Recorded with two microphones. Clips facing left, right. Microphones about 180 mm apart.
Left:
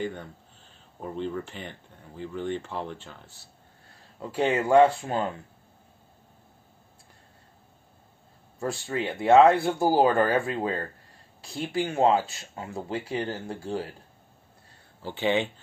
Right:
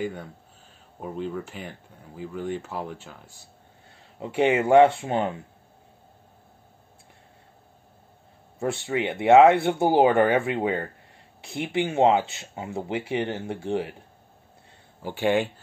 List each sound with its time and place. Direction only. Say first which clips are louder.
0.0 s speech: right 2 dB; 5° right (ahead or behind)
4.2 s speech: right 4 dB; 20° right (ahead or behind)
8.5 s speech: right 3 dB; 25° right (ahead or behind)
15.0 s speech: right 3 dB; 10° right (ahead or behind)